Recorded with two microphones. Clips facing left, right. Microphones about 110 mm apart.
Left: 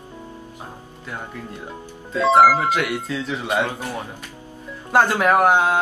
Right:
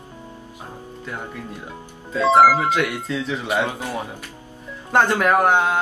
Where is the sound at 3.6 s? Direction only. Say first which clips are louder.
Even; 15° right (ahead or behind).